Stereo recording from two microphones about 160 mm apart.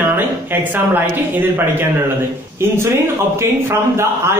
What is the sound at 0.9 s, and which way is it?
Speech, 15° right (ahead or behind).